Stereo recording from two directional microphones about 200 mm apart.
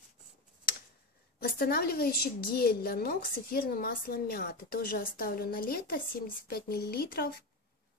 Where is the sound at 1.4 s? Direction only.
50° left (ahead or behind).